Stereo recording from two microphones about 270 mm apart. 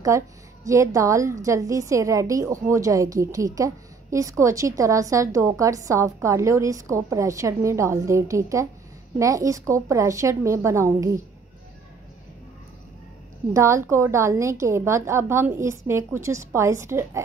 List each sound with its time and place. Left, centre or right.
0.1 s a woman's voice: centre
13.5 s a woman's voice: centre